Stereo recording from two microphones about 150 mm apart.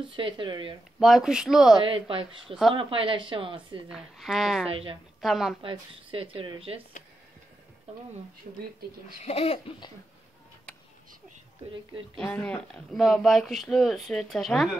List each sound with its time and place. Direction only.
0.1 s speech: 35° right (ahead or behind)
0.9 s speech: centre (ahead or behind)
1.8 s speech: 35° right (ahead or behind)
3.9 s speech: centre (ahead or behind)
4.6 s speech: 40° right (ahead or behind)
5.2 s speech: centre (ahead or behind)
5.6 s speech: 35° right (ahead or behind)
9.2 s speech: 45° left (ahead or behind)
12.2 s speech: 10° left (ahead or behind)